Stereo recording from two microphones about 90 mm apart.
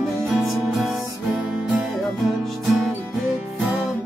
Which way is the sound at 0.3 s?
Centre (ahead or behind).